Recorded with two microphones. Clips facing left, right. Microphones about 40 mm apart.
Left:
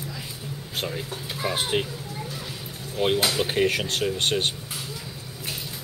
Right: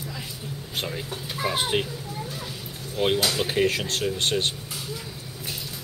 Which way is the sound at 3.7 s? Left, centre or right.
Left.